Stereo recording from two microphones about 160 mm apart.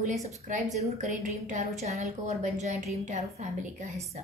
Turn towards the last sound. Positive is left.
turn(degrees=-45)  # may be behind; listen again after turning